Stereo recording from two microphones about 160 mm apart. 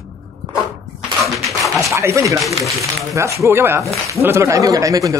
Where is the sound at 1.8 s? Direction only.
20° right (ahead or behind).